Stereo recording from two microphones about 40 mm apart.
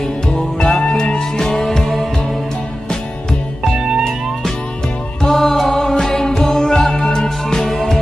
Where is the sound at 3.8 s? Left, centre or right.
Centre.